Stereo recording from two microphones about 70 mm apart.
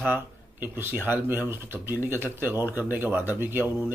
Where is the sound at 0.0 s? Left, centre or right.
Right.